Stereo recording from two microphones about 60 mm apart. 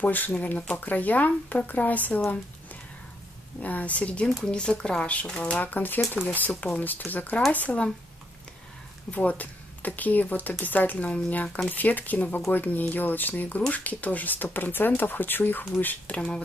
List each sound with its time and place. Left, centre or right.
0.0 s speech: left
3.6 s speech: left
6.2 s speech: centre
6.6 s speech: left
9.1 s speech: left